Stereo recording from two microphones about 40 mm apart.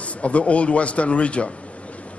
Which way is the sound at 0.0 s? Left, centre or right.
Left.